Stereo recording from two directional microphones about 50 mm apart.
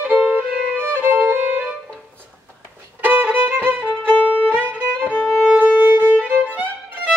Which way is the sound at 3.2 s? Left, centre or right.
Right.